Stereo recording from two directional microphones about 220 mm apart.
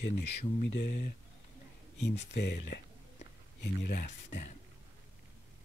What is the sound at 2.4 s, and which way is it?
Speech, 50° left (ahead or behind).